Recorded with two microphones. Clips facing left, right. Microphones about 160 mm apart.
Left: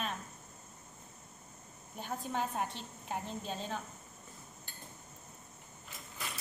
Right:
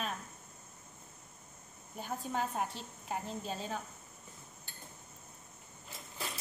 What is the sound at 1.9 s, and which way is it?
A woman's voice, 5° right (ahead or behind).